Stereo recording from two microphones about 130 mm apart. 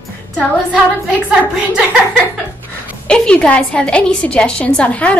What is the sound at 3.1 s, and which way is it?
A woman's voice, 10° left (ahead or behind).